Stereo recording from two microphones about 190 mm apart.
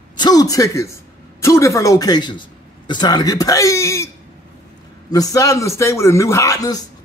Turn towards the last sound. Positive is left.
turn(degrees=20)  # may be behind; listen again after turning